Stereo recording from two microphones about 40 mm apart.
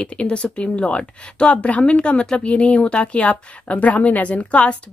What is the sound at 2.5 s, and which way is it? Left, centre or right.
A woman's voice, left.